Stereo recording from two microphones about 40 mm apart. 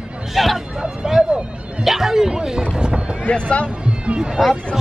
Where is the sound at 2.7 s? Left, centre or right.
Right.